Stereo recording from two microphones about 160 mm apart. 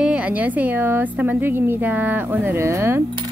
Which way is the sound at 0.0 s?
10° right (ahead or behind).